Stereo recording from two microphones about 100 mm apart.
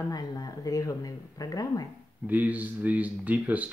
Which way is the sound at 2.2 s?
15° right (ahead or behind).